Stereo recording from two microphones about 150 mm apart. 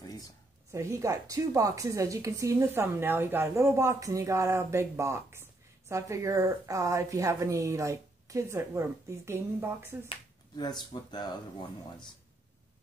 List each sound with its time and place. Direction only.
0.7 s a woman's voice: 20° right (ahead or behind)
10.0 s speech: 30° left (ahead or behind)